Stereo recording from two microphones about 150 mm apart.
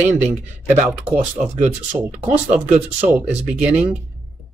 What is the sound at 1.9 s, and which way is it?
Speech, 15° right (ahead or behind).